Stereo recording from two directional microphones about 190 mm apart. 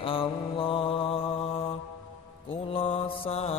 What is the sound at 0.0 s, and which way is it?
Mantra, 30° left (ahead or behind).